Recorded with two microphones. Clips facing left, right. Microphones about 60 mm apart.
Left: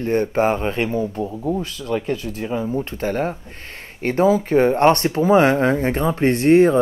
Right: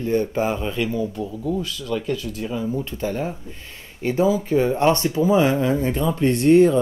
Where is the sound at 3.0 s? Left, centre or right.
Left.